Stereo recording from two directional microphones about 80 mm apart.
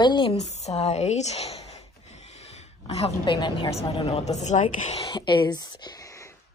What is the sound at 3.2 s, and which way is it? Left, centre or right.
Speech, left.